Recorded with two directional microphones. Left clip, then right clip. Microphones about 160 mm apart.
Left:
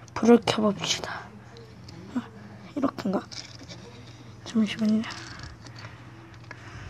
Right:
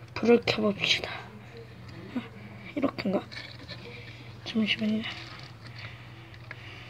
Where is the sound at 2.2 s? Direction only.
25° left (ahead or behind).